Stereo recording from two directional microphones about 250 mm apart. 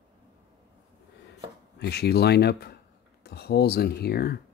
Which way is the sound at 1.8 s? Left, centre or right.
Left.